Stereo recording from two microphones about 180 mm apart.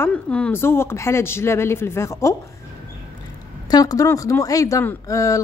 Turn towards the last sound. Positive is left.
turn(degrees=20)  # may be behind; listen again after turning